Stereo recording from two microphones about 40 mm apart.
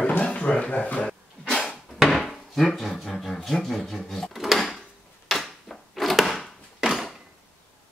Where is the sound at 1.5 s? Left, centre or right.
Centre.